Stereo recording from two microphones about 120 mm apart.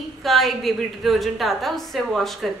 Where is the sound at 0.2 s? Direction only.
Centre (ahead or behind).